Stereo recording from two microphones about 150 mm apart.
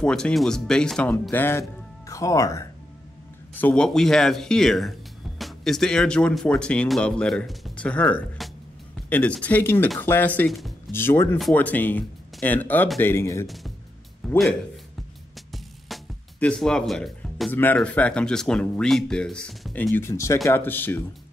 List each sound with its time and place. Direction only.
0.0 s speech: 5° left (ahead or behind); by 2.6 s 20° left (ahead or behind)
3.5 s speech: 10° left (ahead or behind)
14.2 s a man's voice: 5° left (ahead or behind)
15.5 s music: 5° left (ahead or behind)
17.7 s speech: 10° left (ahead or behind)